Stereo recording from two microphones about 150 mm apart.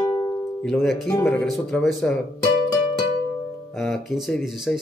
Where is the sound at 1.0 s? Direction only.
15° left (ahead or behind).